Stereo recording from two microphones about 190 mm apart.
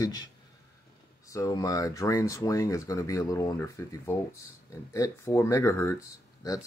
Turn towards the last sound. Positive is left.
turn(degrees=15)  # may be behind; listen again after turning